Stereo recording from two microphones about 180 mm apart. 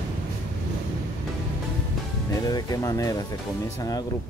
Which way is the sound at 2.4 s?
20° left (ahead or behind).